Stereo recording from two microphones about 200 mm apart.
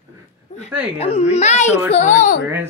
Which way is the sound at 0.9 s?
30° left (ahead or behind).